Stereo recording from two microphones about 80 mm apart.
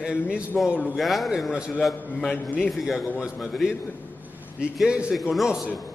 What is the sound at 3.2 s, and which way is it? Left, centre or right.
Speech, centre.